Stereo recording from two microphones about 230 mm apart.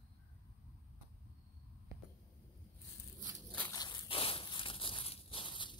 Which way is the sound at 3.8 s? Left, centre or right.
Centre.